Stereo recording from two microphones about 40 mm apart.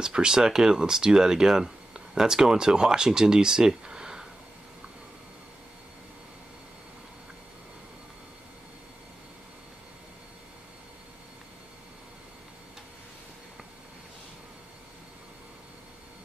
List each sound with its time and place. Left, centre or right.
0.0 s speech: centre